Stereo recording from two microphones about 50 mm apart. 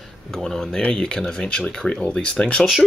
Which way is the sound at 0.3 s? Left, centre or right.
Centre.